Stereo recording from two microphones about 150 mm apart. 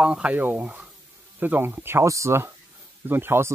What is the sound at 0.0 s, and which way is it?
Speech, 5° right (ahead or behind).